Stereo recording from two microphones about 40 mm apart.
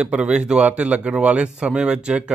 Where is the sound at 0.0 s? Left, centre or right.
Right.